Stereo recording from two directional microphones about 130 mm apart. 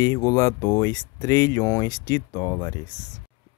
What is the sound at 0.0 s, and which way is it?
Speech, 25° left (ahead or behind).